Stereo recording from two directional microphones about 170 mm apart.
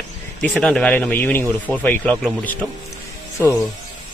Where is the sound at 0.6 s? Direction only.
5° left (ahead or behind).